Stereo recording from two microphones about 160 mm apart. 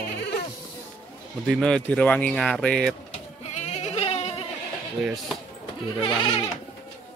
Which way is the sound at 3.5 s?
45° left (ahead or behind).